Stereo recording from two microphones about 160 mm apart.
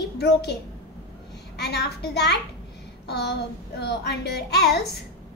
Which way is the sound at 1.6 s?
90° left.